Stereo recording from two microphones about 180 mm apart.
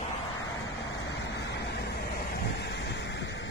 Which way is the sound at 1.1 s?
75° left (ahead or behind).